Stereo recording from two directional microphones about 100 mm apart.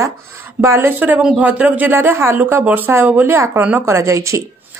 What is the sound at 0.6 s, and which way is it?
Speech, 25° right (ahead or behind).